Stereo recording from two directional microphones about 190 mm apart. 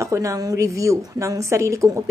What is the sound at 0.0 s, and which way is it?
A woman's voice, 15° right (ahead or behind).